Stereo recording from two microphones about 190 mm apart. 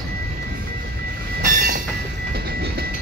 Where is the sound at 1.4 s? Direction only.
45° right (ahead or behind).